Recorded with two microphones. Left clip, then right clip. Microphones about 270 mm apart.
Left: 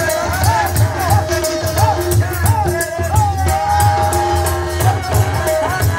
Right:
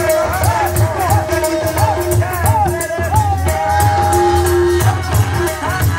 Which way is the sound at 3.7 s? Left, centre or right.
Left.